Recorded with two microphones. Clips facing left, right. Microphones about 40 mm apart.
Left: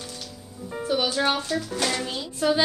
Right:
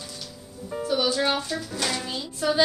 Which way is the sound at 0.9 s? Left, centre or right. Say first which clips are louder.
Even; centre.